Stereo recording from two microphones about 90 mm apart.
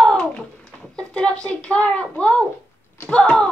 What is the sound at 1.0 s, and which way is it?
A woman's voice, 10° left (ahead or behind).